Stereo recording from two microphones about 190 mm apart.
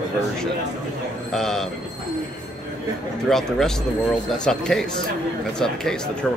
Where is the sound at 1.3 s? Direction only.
Centre (ahead or behind).